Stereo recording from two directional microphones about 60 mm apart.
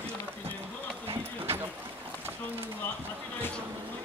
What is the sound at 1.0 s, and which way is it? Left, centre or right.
Clip-clop, right.